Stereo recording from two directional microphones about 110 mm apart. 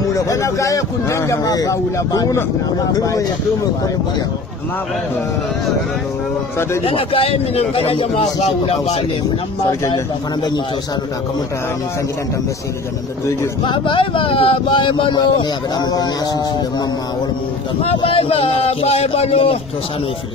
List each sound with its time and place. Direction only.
0.1 s speech: 30° left (ahead or behind)
6.8 s speech: 60° left (ahead or behind)
8.1 s speech: 75° left (ahead or behind)
13.7 s speech: 50° left (ahead or behind)
17.8 s speech: 60° left (ahead or behind)